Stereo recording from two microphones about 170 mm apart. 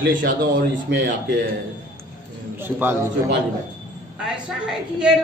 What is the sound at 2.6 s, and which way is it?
Speech, 10° right (ahead or behind).